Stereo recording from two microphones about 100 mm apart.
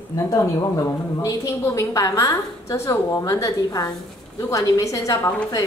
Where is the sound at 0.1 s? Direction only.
35° left (ahead or behind).